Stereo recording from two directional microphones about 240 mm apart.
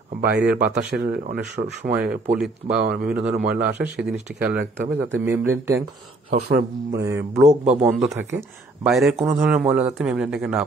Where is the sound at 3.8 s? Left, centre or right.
Centre.